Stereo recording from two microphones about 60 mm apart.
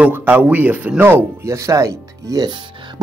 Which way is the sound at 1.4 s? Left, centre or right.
Right.